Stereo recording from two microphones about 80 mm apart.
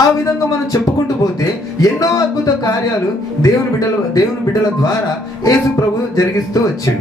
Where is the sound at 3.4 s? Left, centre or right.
Left.